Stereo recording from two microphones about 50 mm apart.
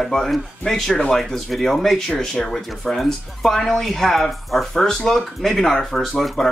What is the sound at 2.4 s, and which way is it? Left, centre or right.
Speech, centre.